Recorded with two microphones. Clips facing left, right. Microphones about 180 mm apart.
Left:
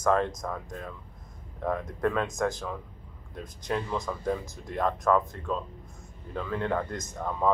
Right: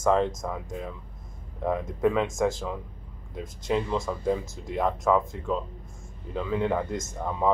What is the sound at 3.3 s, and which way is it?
Speech, 15° right (ahead or behind).